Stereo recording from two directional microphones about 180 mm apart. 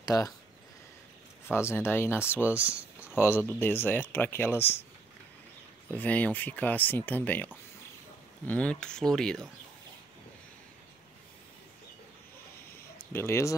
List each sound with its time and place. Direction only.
0.0 s speech: 20° left (ahead or behind)
1.5 s speech: 15° left (ahead or behind)
2.5 s a sound: 5° right (ahead or behind)
3.2 s speech: 10° left (ahead or behind)
5.9 s speech: 10° left (ahead or behind)
13.1 s speech: 15° left (ahead or behind)